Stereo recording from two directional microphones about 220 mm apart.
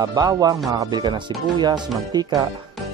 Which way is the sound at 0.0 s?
15° right (ahead or behind).